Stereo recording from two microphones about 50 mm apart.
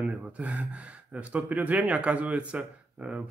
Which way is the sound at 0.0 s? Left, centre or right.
Right.